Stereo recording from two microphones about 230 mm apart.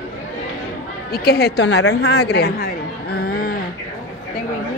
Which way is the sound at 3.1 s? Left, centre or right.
Left.